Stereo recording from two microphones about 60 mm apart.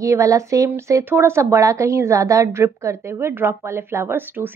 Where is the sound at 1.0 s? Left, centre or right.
Right.